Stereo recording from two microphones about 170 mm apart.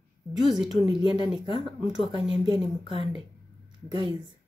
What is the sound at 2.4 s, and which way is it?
Speech, 25° right (ahead or behind).